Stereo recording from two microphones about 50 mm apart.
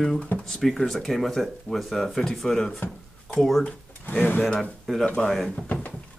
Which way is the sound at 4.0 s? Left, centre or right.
Left.